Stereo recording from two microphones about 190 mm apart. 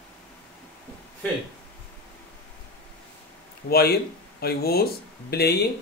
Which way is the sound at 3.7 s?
55° left (ahead or behind).